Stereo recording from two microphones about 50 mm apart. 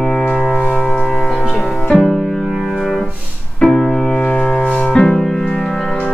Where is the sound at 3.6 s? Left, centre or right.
Centre.